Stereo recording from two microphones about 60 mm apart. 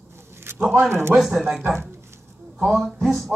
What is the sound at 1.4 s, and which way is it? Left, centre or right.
Speech, centre.